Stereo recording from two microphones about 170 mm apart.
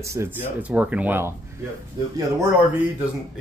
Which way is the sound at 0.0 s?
15° right (ahead or behind).